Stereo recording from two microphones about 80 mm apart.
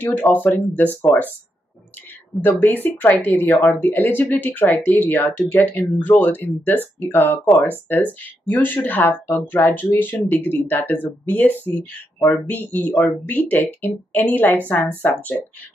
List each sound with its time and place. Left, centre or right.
0.0 s speech: left
2.4 s speech: left